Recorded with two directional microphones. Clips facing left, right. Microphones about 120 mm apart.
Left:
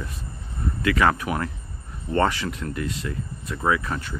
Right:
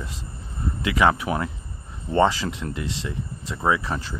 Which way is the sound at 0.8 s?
20° right (ahead or behind).